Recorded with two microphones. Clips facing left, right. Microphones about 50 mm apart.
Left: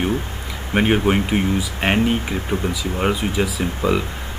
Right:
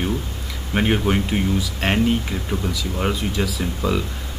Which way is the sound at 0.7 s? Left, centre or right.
Centre.